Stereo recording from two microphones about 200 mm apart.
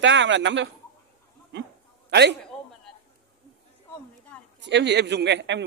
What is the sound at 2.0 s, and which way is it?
Speech, 55° right (ahead or behind).